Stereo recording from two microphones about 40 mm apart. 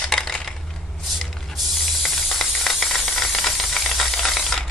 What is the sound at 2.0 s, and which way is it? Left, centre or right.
Steam, centre.